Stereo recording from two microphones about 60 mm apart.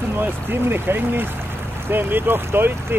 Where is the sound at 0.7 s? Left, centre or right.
Right.